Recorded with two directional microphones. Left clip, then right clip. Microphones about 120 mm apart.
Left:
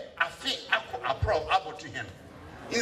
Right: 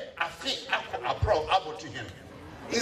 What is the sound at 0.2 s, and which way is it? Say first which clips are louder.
A man's voice: left 2 dB; 45° left (ahead or behind).